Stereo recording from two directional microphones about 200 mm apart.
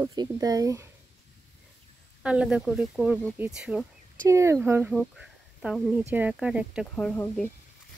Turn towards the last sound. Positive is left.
turn(degrees=5)  # may be behind; listen again after turning